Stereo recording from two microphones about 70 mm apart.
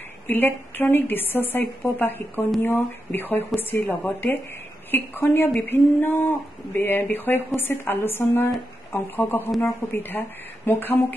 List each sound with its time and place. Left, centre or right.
0.3 s a woman's voice: left